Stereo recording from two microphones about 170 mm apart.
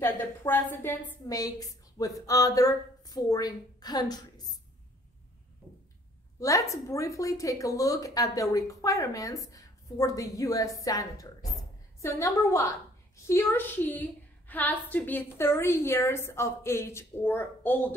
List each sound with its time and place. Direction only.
0.0 s a woman's voice: 10° left (ahead or behind)
6.4 s a woman's voice: 20° left (ahead or behind)